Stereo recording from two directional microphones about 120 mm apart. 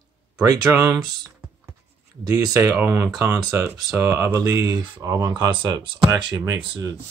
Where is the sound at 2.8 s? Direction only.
20° right (ahead or behind); by 6.1 s 40° right (ahead or behind).